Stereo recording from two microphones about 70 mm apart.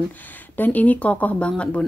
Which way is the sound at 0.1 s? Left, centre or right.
Left.